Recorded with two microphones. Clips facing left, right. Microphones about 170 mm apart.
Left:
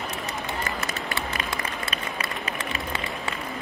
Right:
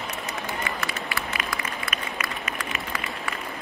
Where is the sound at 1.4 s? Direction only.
30° left (ahead or behind).